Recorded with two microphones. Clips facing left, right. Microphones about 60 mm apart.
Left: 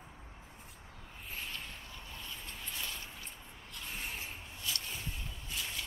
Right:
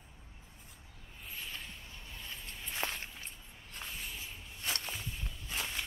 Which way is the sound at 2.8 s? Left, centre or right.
Right.